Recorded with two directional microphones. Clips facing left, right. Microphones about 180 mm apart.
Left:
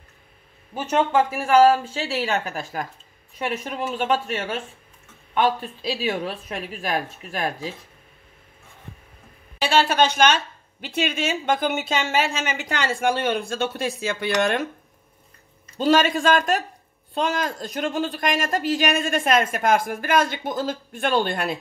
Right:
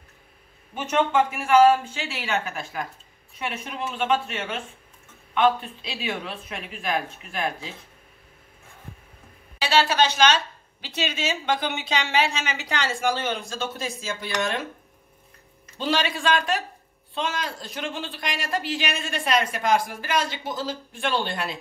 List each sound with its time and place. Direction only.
0.7 s speech: 35° left (ahead or behind)
9.6 s a woman's voice: 50° left (ahead or behind)
15.8 s a woman's voice: 45° left (ahead or behind)